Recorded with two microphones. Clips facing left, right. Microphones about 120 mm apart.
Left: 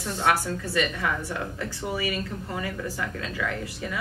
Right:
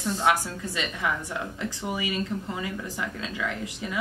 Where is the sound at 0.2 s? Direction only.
20° right (ahead or behind).